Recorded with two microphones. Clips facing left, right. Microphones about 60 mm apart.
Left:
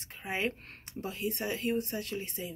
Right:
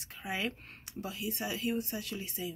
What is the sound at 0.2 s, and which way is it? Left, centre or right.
Speech, left.